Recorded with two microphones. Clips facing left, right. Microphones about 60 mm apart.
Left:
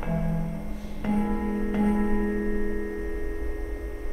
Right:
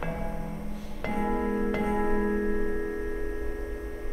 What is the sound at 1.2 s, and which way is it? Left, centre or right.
Music, right.